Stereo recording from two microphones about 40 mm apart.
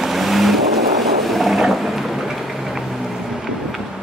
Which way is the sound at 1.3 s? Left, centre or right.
Centre.